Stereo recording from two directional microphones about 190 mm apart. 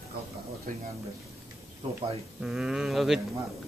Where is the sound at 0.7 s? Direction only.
45° right (ahead or behind).